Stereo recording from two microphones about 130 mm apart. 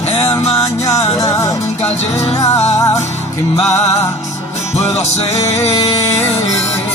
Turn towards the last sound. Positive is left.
turn(degrees=25)  # may be behind; listen again after turning